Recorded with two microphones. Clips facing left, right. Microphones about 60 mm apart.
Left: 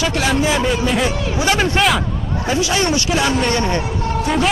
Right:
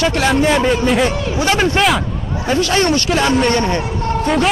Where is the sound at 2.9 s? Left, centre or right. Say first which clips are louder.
Right 2 dB; right.